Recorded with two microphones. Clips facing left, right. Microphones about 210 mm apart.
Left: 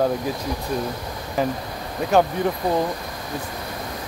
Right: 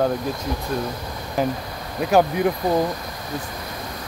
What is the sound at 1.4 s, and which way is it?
Speech, centre (ahead or behind).